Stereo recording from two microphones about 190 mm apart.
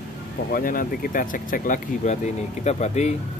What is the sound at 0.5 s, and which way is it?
Speech, 45° left (ahead or behind).